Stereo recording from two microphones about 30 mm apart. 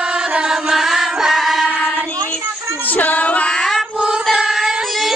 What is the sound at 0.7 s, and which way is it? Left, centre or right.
Chant, centre.